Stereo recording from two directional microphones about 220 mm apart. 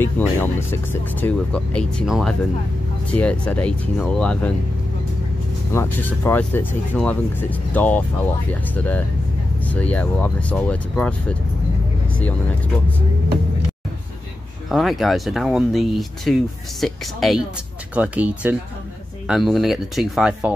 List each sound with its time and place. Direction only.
0.0 s speech: 10° left (ahead or behind)
5.7 s speech: 10° left (ahead or behind)
14.7 s speech: centre (ahead or behind)